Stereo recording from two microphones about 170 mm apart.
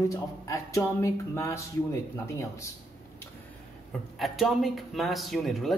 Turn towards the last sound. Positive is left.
turn(degrees=0)  # may be behind; listen again after turning